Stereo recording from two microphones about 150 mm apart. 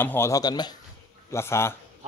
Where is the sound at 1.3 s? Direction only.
15° left (ahead or behind).